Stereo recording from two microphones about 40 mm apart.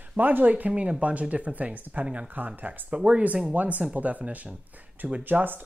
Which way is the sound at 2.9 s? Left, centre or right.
Right.